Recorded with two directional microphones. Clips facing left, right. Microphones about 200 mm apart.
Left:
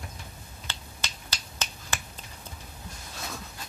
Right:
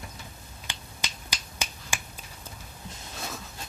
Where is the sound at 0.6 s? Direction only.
15° right (ahead or behind).